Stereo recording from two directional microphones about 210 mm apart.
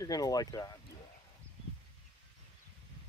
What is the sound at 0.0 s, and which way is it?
Speech, 15° left (ahead or behind).